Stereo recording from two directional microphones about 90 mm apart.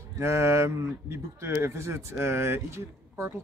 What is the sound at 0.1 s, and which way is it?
Speech, 30° right (ahead or behind).